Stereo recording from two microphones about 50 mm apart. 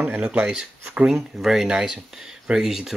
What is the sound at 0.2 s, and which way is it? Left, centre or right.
Speech, right.